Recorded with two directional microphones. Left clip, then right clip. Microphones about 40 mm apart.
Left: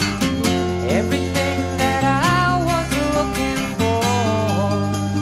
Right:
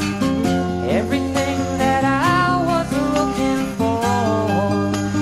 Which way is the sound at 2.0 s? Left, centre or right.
Left.